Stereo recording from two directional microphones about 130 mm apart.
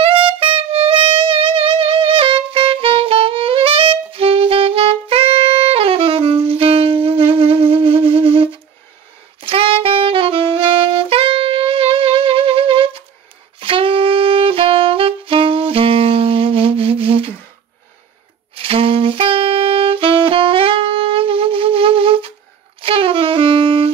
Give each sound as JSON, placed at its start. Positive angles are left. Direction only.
{"t": 0.0, "sound": "music", "side_deg": -45}
{"t": 9.4, "sound": "saxophone", "side_deg": -45}
{"t": 18.5, "sound": "saxophone", "side_deg": -45}